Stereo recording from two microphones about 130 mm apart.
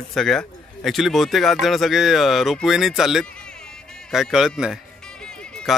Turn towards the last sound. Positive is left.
turn(degrees=5)  # may be behind; listen again after turning